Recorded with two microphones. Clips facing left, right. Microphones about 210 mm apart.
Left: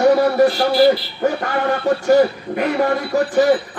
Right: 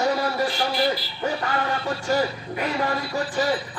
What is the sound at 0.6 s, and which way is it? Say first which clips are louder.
Speech: left 10 dB; 35° left (ahead or behind).